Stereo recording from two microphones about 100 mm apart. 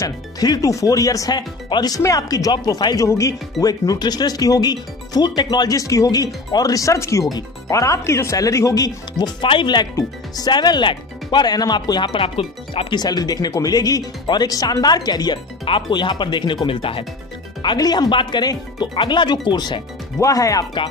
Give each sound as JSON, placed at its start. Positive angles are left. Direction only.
{"t": 0.0, "sound": "speech", "side_deg": 40}
{"t": 9.9, "sound": "speech", "side_deg": 40}
{"t": 12.9, "sound": "speech", "side_deg": 45}
{"t": 16.6, "sound": "speech", "side_deg": 60}
{"t": 17.6, "sound": "speech", "side_deg": 45}
{"t": 20.2, "sound": "speech", "side_deg": 35}